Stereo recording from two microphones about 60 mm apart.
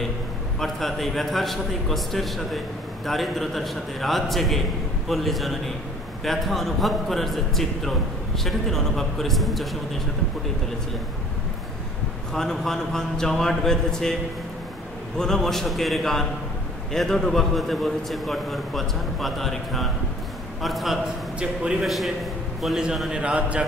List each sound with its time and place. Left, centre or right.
0.6 s a man's voice: centre
12.4 s speech: centre
15.1 s a man's voice: centre
23.1 s a man's voice: centre